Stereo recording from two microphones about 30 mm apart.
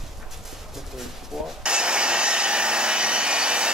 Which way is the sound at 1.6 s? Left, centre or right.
Right.